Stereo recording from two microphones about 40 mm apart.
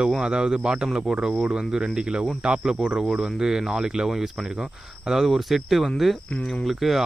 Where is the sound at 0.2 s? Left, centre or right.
Centre.